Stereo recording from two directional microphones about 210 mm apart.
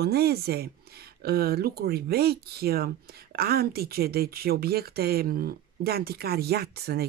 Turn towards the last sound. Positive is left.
turn(degrees=-50)  # may be behind; listen again after turning